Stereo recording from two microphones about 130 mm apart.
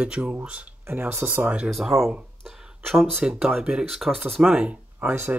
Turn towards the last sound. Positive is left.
turn(degrees=-15)  # may be behind; listen again after turning